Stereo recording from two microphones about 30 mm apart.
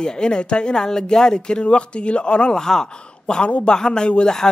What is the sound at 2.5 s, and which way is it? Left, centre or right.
Speech, centre.